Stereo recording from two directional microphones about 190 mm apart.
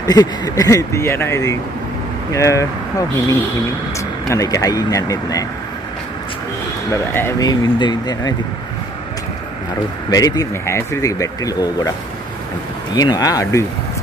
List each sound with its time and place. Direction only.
0.0 s speech: 20° left (ahead or behind)
6.9 s speech: 15° left (ahead or behind)
10.0 s speech: 20° left (ahead or behind)
12.9 s speech: 20° left (ahead or behind)